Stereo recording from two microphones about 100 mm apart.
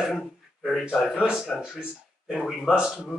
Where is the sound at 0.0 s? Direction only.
Centre (ahead or behind).